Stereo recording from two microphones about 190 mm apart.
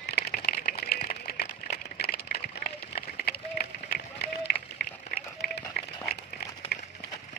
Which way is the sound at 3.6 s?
50° left (ahead or behind).